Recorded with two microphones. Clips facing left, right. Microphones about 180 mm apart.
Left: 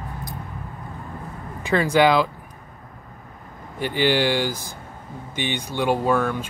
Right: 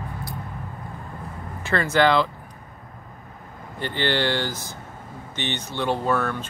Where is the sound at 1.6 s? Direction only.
15° left (ahead or behind).